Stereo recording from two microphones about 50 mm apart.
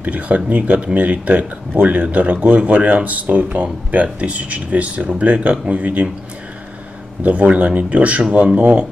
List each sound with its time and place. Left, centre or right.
0.0 s speech: right
7.2 s speech: right